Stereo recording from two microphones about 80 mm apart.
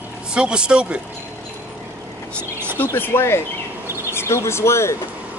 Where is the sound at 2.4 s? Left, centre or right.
Right.